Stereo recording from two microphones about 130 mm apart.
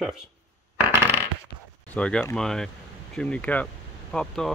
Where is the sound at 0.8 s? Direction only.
20° right (ahead or behind).